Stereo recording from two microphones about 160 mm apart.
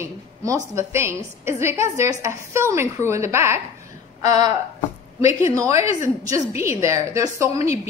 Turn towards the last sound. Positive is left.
turn(degrees=-20)  # may be behind; listen again after turning